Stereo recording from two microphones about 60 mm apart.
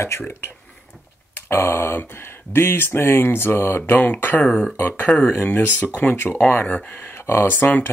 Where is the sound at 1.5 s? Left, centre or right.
Left.